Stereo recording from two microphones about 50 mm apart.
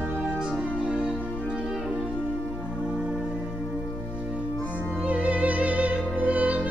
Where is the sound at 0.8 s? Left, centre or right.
Centre.